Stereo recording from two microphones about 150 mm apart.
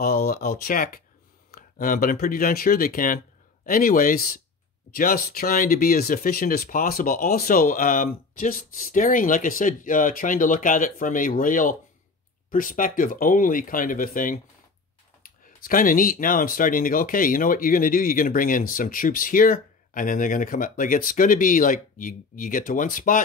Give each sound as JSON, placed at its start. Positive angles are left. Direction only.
{"t": 0.0, "sound": "speech", "side_deg": 80}